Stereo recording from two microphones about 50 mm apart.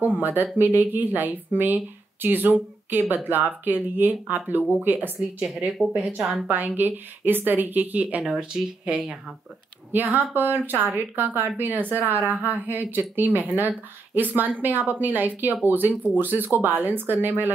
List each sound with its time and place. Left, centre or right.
0.0 s speech: right
5.7 s a woman's voice: centre
6.4 s speech: right
9.9 s speech: right